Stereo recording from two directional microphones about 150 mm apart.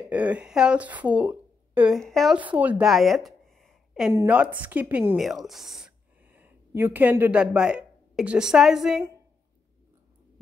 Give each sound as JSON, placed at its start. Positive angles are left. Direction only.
{"t": 0.1, "sound": "a woman's voice", "side_deg": -10}
{"t": 2.0, "sound": "speech", "side_deg": 0}
{"t": 2.3, "sound": "speech", "side_deg": -10}
{"t": 4.1, "sound": "speech", "side_deg": -20}
{"t": 5.1, "sound": "speech", "side_deg": 0}